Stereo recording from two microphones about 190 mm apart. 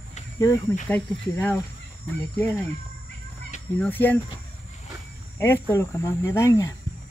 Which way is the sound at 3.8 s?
10° left (ahead or behind).